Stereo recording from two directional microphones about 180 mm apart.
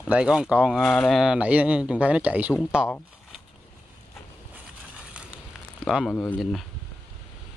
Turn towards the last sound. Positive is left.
turn(degrees=0)  # may be behind; listen again after turning